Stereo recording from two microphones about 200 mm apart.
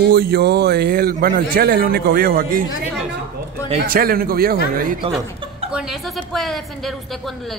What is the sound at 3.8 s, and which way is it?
Speech, 45° right (ahead or behind).